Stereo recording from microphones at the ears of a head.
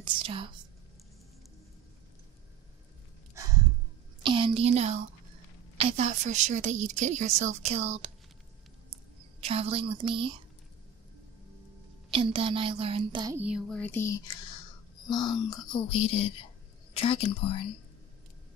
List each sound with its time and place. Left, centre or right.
0.0 s whispering: right
3.3 s a woman's voice: right
12.1 s a woman's voice: right
14.0 s speech: left